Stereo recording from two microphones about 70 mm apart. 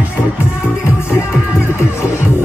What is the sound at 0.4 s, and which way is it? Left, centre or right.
Music, centre.